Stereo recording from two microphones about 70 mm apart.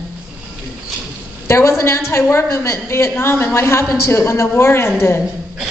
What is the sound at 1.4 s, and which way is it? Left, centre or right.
A woman's voice, left.